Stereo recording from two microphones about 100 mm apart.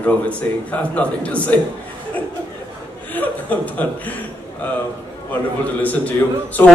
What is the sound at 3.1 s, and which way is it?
A man's voice, 15° left (ahead or behind).